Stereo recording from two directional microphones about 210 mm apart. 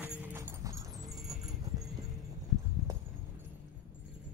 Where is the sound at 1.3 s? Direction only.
20° right (ahead or behind).